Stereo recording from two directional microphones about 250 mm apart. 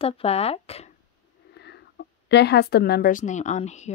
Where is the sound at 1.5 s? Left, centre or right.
Left.